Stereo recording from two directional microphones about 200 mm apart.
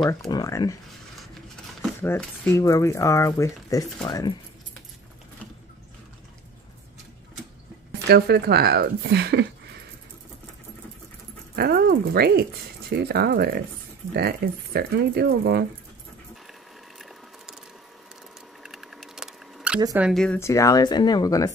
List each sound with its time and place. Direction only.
0.3 s speech: 15° left (ahead or behind)
2.0 s speech: 10° left (ahead or behind)
8.1 s speech: 55° right (ahead or behind)
11.5 s speech: 50° right (ahead or behind)
18.6 s a sound: centre (ahead or behind)
20.0 s speech: centre (ahead or behind)
20.3 s speech: 15° left (ahead or behind)